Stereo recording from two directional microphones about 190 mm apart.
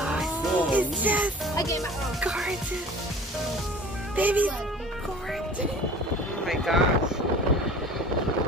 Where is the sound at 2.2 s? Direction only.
Centre (ahead or behind).